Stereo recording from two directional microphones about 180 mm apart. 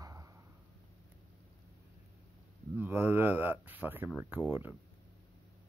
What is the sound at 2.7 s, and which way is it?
Speech, 10° right (ahead or behind).